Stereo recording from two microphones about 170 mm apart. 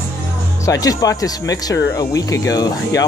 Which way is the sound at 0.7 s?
20° left (ahead or behind).